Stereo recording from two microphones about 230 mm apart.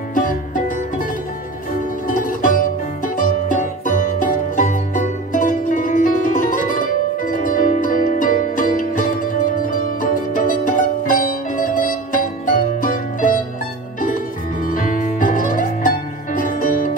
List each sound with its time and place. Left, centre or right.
0.1 s music: left
2.0 s music: left